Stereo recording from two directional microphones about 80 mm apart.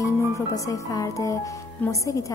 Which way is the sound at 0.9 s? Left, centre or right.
Left.